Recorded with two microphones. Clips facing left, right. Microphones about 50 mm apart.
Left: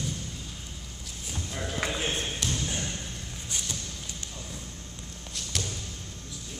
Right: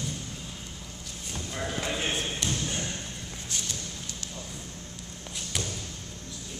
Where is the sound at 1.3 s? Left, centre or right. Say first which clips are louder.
Right 1 dB; centre.